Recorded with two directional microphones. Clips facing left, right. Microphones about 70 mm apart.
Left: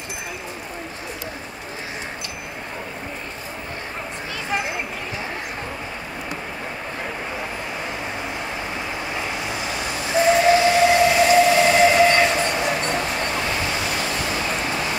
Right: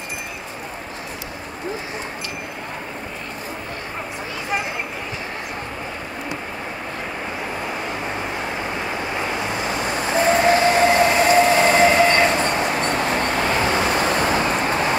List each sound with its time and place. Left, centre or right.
9.6 s train: right
12.3 s vehicle: right